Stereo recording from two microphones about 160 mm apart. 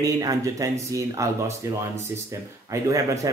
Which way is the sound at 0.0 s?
20° right (ahead or behind).